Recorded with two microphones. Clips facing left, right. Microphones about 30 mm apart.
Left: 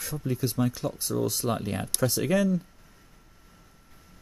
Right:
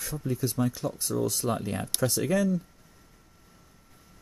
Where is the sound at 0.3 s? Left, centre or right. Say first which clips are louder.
Left 1 dB; left.